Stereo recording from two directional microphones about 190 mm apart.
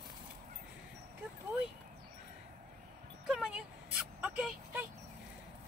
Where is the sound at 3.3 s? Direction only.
5° right (ahead or behind).